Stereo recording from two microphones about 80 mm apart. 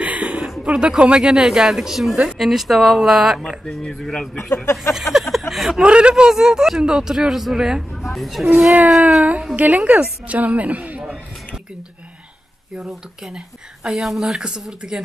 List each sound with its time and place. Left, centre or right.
0.0 s a sound: centre
0.7 s speech: centre
3.6 s speech: centre
4.9 s speech: centre
5.8 s speech: centre
8.7 s a woman's voice: centre
12.7 s speech: centre